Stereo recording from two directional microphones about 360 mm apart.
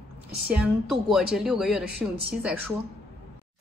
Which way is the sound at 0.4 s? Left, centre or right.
Centre.